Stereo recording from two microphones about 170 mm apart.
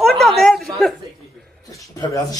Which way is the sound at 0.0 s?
Centre (ahead or behind).